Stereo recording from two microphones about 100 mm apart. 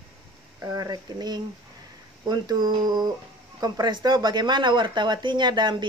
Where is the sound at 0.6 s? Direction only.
35° right (ahead or behind).